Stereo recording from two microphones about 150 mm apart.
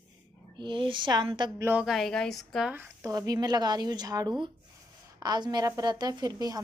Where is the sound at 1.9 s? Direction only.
Centre (ahead or behind).